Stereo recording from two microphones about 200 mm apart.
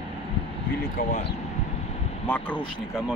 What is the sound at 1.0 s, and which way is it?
Speech, 45° left (ahead or behind).